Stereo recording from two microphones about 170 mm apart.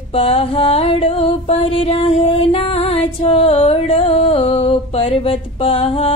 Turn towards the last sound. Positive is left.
turn(degrees=35)  # may be behind; listen again after turning